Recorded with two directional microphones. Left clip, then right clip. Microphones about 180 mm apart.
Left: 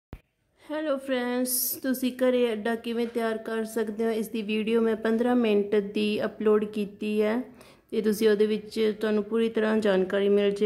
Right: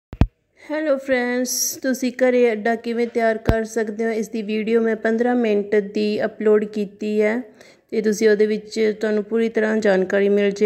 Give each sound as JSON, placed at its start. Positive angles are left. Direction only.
{"t": 0.7, "sound": "a woman's voice", "side_deg": -25}